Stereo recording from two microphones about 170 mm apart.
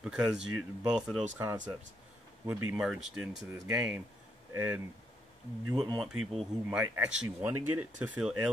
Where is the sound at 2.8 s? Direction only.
Centre (ahead or behind).